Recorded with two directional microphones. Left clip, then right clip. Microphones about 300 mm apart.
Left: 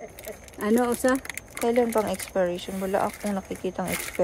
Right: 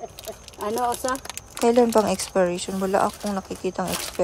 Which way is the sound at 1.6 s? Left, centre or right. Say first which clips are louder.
Right 5 dB; centre.